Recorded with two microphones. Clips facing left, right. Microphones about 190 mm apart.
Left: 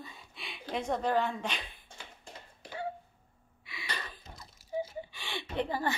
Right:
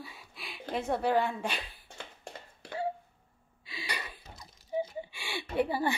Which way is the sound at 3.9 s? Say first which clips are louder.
Even; 10° right (ahead or behind).